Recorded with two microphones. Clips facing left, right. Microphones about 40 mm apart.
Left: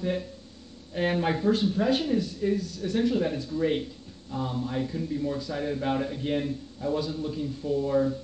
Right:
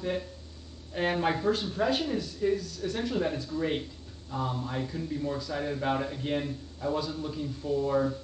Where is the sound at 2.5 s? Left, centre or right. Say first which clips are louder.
Left 2 dB; left.